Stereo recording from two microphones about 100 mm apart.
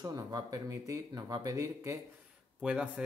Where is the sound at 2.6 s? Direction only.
10° right (ahead or behind).